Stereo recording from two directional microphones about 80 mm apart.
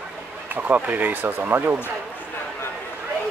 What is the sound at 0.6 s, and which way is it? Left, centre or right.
Speech, centre.